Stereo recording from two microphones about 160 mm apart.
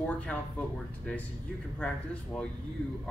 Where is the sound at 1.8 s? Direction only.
5° left (ahead or behind).